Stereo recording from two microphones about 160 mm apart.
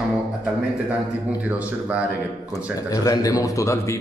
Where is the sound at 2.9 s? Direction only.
20° left (ahead or behind).